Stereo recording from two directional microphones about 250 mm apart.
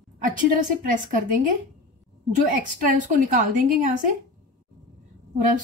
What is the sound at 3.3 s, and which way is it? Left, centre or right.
Speech, right.